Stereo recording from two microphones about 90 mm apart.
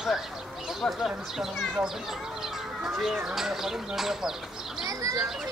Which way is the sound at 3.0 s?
5° right (ahead or behind).